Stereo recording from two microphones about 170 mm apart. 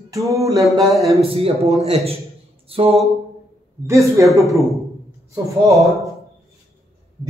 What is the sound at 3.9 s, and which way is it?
Speech, 15° right (ahead or behind).